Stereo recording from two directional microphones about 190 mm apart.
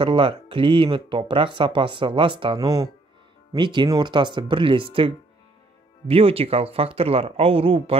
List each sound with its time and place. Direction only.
0.0 s speech: 25° right (ahead or behind)